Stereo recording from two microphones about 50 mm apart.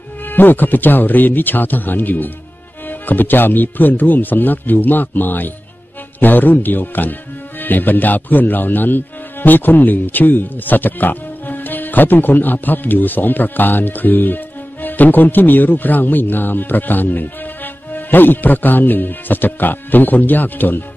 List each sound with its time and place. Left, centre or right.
0.3 s speech: left